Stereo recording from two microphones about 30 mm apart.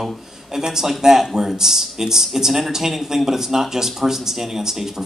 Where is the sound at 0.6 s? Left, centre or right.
Centre.